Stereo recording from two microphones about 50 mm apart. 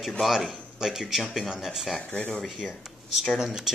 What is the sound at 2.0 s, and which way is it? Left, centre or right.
Speech, left.